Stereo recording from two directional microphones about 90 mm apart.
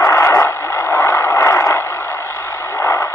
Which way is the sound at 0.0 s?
35° left (ahead or behind).